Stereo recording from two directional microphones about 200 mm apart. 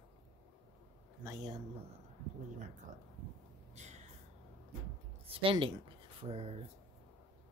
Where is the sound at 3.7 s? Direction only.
35° right (ahead or behind).